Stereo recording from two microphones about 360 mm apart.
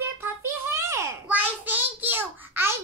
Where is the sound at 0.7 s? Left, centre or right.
Centre.